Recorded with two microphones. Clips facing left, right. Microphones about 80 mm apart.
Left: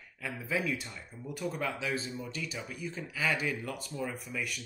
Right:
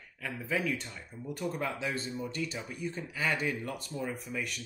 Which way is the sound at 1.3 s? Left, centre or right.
Centre.